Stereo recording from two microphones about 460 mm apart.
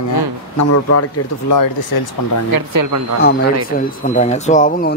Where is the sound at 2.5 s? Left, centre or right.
Right.